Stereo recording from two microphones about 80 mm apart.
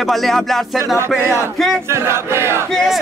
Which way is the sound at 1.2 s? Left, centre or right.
Right.